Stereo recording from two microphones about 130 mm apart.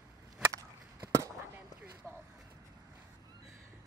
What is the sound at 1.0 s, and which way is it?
Chop, 25° right (ahead or behind).